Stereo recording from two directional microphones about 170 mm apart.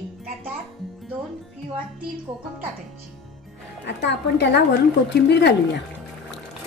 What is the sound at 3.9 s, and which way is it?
A woman's voice, 90° left.